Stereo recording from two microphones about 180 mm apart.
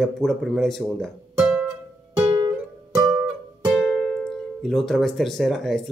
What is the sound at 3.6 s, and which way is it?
Speech, 5° right (ahead or behind).